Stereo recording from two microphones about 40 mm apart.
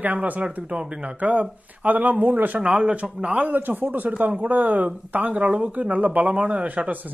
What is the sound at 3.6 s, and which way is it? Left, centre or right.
Speech, right.